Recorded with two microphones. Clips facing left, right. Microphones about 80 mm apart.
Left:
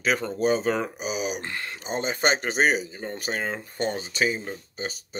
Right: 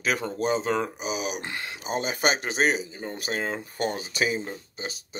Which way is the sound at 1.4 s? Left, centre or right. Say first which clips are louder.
Left 1 dB; centre.